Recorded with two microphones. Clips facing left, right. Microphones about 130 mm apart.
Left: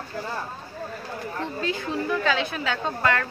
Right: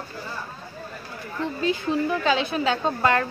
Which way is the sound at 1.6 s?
20° right (ahead or behind).